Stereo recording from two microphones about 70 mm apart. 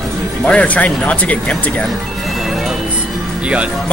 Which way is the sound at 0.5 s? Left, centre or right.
Centre.